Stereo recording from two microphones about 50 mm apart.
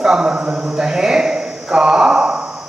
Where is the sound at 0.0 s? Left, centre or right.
Centre.